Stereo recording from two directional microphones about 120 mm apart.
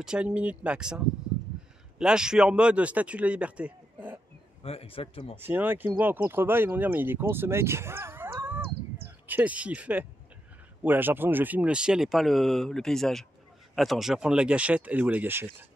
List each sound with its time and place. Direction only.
0.0 s speech: 10° right (ahead or behind)
4.6 s speech: 55° left (ahead or behind)
5.3 s speech: 15° right (ahead or behind)